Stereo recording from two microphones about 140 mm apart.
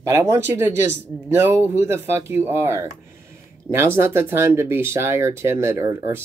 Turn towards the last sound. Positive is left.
turn(degrees=-20)  # may be behind; listen again after turning